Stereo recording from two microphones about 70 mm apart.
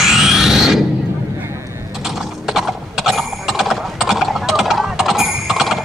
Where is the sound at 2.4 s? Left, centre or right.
Centre.